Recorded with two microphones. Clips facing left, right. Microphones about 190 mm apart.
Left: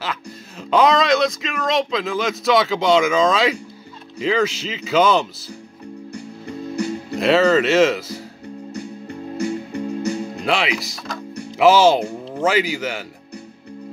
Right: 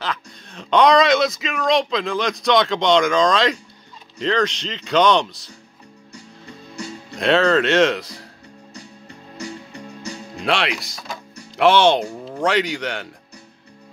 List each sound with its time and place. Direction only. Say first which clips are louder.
0.0 s speech: even; 5° left (ahead or behind)
7.2 s speech: left 1 dB; 5° left (ahead or behind)
9.4 s music: left 9 dB; 55° left (ahead or behind)
10.4 s speech: right 1 dB; centre (ahead or behind)